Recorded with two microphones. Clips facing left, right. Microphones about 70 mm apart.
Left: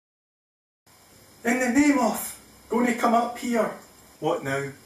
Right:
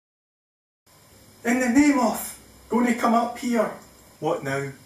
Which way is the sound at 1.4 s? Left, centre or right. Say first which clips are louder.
Right 2 dB; centre.